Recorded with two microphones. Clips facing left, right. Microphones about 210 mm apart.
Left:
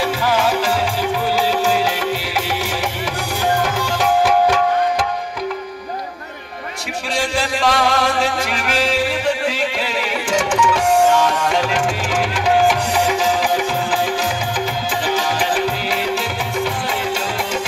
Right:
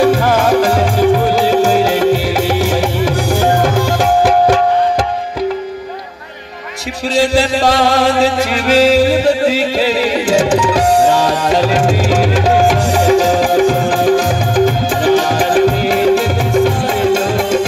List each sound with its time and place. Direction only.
0.0 s music: 50° right (ahead or behind)
7.3 s music: 40° right (ahead or behind)